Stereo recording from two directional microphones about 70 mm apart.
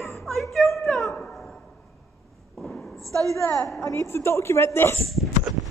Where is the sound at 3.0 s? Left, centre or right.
Right.